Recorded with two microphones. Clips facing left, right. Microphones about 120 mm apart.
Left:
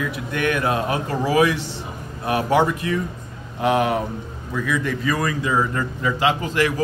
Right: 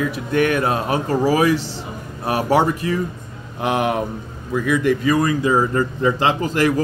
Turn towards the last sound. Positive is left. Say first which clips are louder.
# right 2 dB
turn(degrees=-40)  # may be behind; listen again after turning